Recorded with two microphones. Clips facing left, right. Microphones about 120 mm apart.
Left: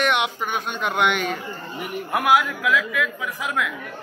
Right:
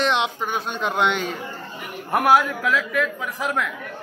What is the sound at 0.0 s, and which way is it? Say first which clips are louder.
Speech: even; 30° right (ahead or behind).